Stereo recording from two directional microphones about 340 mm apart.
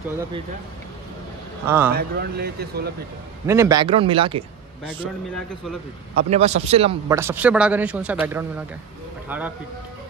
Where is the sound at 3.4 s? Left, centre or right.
Centre.